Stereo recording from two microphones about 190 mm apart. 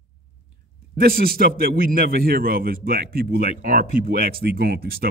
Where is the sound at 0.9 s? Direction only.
50° right (ahead or behind).